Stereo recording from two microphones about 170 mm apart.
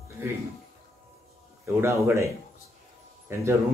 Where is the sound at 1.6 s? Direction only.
15° right (ahead or behind).